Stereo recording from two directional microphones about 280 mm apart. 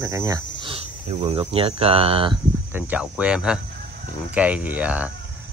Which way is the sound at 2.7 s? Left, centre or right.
Centre.